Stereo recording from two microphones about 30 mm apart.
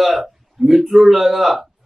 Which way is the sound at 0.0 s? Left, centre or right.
Centre.